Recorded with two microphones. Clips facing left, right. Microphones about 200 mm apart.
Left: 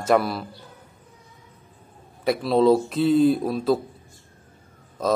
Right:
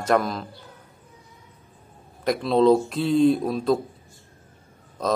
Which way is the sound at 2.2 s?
5° left (ahead or behind).